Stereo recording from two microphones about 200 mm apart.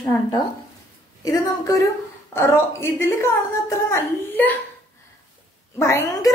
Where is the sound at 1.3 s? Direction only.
15° left (ahead or behind).